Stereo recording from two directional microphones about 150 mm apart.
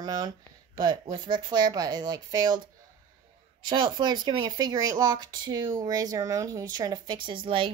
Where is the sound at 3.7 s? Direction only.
30° right (ahead or behind).